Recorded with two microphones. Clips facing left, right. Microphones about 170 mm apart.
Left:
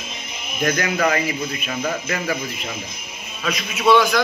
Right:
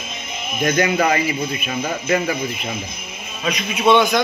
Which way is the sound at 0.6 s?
25° right (ahead or behind).